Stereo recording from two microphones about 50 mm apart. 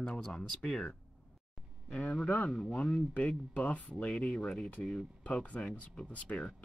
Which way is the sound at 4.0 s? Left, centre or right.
Centre.